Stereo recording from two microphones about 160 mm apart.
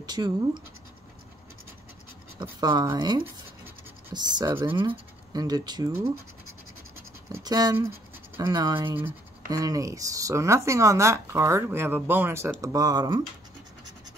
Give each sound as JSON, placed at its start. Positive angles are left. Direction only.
{"t": 0.0, "sound": "speech", "side_deg": -25}
{"t": 2.4, "sound": "speech", "side_deg": -25}
{"t": 7.3, "sound": "speech", "side_deg": -25}